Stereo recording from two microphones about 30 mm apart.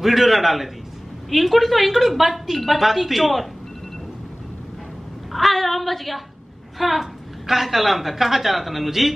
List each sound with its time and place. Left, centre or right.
0.0 s a woman's voice: centre
5.3 s a woman's voice: centre